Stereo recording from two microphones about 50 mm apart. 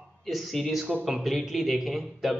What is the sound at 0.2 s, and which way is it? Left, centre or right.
A man's voice, centre.